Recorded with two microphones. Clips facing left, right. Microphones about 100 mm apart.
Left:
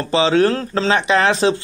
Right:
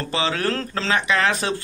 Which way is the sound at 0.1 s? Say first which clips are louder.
Left 9 dB; 25° left (ahead or behind).